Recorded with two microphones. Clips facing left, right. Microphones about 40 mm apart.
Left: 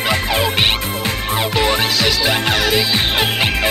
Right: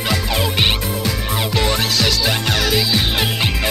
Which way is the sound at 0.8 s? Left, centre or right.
Left.